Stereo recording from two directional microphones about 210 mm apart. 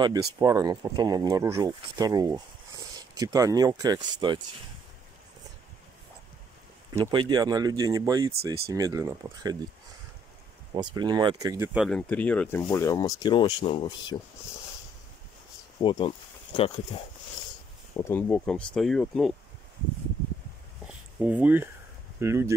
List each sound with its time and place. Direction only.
0.0 s speech: 20° right (ahead or behind)
6.9 s speech: 20° right (ahead or behind)
10.7 s speech: 20° right (ahead or behind)
11.8 s speech: 5° left (ahead or behind); by 14.1 s 25° left (ahead or behind)
15.8 s speech: 20° left (ahead or behind)
17.9 s speech: 10° left (ahead or behind)
21.2 s speech: 10° right (ahead or behind)